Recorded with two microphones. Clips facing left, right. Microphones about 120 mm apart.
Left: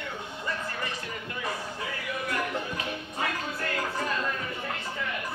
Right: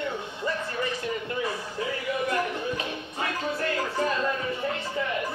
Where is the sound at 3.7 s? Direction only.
25° right (ahead or behind).